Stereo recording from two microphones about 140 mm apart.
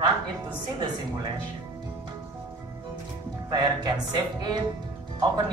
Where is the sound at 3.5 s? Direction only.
30° right (ahead or behind).